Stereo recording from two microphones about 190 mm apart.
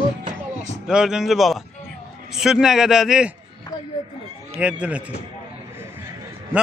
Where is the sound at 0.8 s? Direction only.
5° right (ahead or behind).